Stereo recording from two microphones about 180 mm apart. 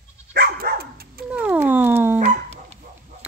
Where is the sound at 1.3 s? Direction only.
10° right (ahead or behind).